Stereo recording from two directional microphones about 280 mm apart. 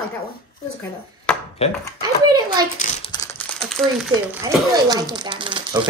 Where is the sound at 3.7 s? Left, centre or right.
Centre.